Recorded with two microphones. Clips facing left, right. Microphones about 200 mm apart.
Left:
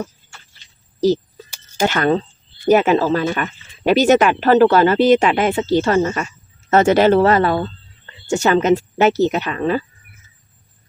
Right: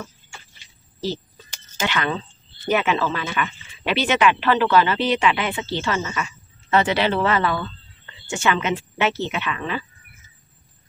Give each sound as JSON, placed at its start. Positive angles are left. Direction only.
{"t": 1.8, "sound": "speech", "side_deg": 45}